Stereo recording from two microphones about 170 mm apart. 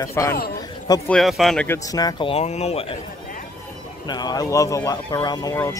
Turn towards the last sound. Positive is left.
turn(degrees=15)  # may be behind; listen again after turning